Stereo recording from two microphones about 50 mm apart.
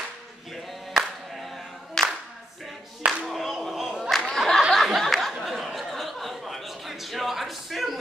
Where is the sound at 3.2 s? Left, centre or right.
Centre.